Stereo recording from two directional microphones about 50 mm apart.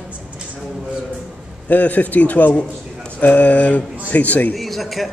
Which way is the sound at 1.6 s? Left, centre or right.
Left.